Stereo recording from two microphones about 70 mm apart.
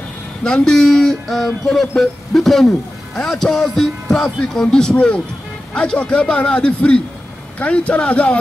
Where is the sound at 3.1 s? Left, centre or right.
Centre.